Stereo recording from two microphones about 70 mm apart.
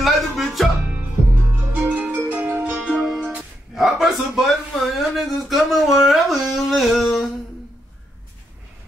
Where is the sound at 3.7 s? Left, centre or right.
Centre.